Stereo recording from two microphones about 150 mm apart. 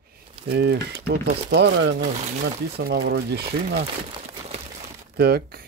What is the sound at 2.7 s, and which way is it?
Speech, 90° right.